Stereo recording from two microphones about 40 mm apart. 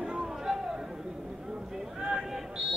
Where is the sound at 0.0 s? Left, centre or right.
Centre.